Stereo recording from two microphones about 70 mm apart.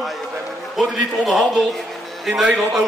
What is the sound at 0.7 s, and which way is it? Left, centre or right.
Speech, centre.